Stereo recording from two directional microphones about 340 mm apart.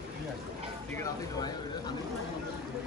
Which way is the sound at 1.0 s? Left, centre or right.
Centre.